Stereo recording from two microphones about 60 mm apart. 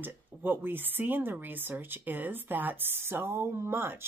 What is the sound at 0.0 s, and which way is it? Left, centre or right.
Speech, right.